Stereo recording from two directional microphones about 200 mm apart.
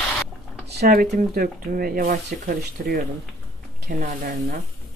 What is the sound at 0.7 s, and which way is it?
Speech, 55° right (ahead or behind).